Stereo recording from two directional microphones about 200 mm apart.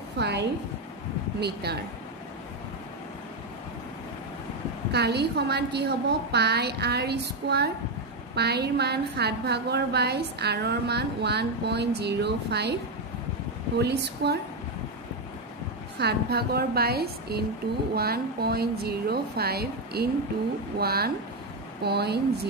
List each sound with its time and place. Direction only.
0.2 s a woman's voice: 55° right (ahead or behind)
4.9 s a woman's voice: 55° right (ahead or behind)
13.7 s a woman's voice: 55° right (ahead or behind)
16.0 s speech: 55° right (ahead or behind)